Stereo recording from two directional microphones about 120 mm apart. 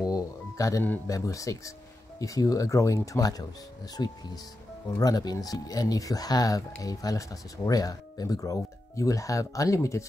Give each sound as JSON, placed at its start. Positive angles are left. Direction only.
{"t": 0.1, "sound": "music", "side_deg": 25}
{"t": 1.0, "sound": "speech", "side_deg": 30}